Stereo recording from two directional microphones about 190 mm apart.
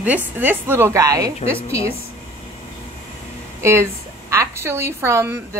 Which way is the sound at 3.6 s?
15° right (ahead or behind).